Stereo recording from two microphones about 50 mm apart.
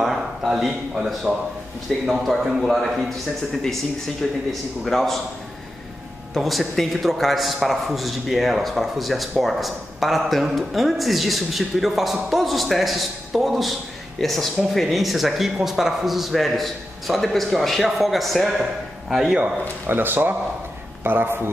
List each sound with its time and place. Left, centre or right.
0.0 s a sound: centre
0.5 s a man's voice: centre
4.5 s a man's voice: centre
6.3 s speech: centre
19.9 s a man's voice: right